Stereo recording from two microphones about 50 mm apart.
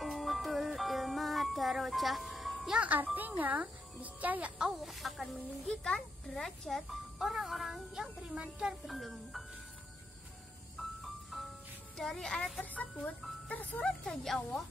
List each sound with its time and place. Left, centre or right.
0.0 s music: centre
3.2 s speech: right
4.7 s a child's voice: centre
5.7 s a child's voice: centre
8.8 s a child's voice: centre
10.8 s music: centre
12.0 s speech: centre
12.6 s speech: left
14.0 s a child's voice: centre